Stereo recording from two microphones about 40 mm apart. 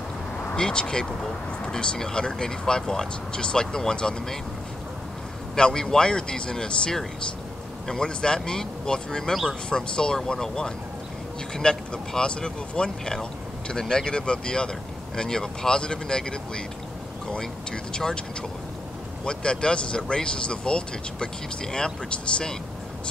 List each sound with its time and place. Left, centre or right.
0.6 s speech: centre
5.6 s speech: centre
19.2 s speech: left